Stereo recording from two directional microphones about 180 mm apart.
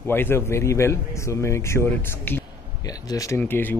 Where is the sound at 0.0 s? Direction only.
10° left (ahead or behind).